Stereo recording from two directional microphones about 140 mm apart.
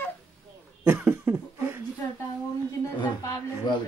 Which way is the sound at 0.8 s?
15° right (ahead or behind).